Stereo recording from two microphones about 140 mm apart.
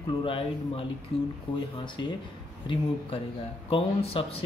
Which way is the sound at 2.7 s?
35° left (ahead or behind).